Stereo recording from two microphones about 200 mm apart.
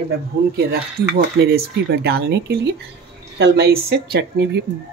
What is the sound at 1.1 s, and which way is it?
Speech, 55° right (ahead or behind).